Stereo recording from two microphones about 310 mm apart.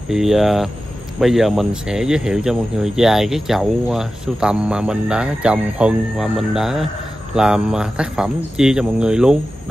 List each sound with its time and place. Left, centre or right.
0.1 s speech: centre